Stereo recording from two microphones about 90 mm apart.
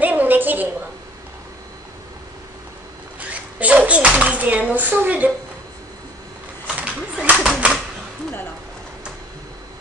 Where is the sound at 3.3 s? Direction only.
15° right (ahead or behind).